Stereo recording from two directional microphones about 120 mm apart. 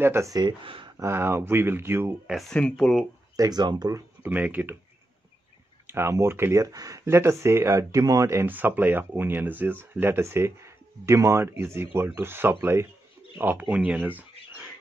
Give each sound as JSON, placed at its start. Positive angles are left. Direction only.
{"t": 0.0, "sound": "speech", "side_deg": -20}
{"t": 0.9, "sound": "speech", "side_deg": -20}
{"t": 2.2, "sound": "speech", "side_deg": 0}
{"t": 3.3, "sound": "speech", "side_deg": -35}
{"t": 4.2, "sound": "speech", "side_deg": -15}
{"t": 5.9, "sound": "speech", "side_deg": -20}